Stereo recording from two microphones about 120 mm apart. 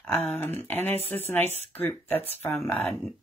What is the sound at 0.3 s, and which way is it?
Speech, 20° left (ahead or behind).